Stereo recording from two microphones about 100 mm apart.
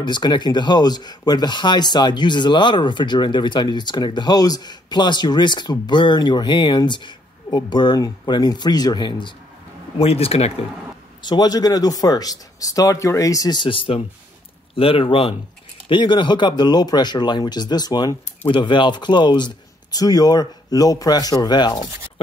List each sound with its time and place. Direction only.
0.0 s speech: 50° left (ahead or behind)
9.9 s speech: 80° left
11.2 s speech: 45° left (ahead or behind)
13.6 s speech: 60° left (ahead or behind)
15.9 s speech: 50° left (ahead or behind)